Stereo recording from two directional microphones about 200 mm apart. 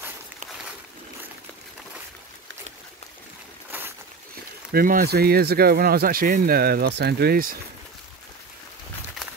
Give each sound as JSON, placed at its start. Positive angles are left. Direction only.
{"t": 4.7, "sound": "speech", "side_deg": -45}